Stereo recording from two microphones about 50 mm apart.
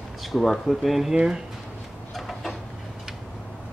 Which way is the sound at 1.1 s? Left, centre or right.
Centre.